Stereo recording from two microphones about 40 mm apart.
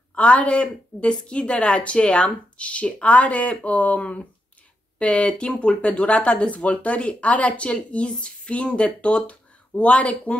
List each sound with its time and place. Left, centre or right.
0.1 s a woman's voice: left